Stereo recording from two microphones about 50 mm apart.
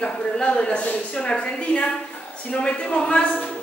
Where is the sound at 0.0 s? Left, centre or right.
Left.